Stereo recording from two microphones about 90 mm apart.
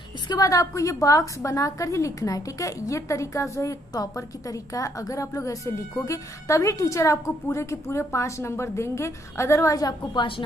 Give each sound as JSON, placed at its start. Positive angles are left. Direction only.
{"t": 0.3, "sound": "a woman's voice", "side_deg": 40}
{"t": 10.1, "sound": "a woman's voice", "side_deg": 75}